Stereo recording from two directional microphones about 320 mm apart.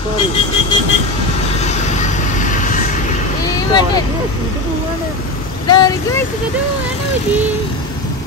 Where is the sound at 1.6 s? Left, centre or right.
Left.